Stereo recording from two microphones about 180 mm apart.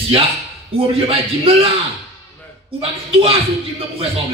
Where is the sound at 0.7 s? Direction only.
30° right (ahead or behind).